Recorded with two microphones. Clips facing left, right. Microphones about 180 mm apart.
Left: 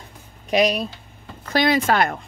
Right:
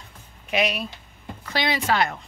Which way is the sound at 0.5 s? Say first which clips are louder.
Left 6 dB; 35° left (ahead or behind).